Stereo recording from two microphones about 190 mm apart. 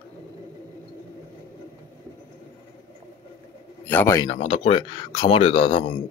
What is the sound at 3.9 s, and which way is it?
Speech, 15° left (ahead or behind).